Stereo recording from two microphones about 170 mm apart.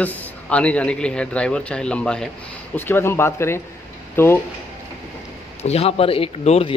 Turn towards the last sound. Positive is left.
turn(degrees=35)  # may be behind; listen again after turning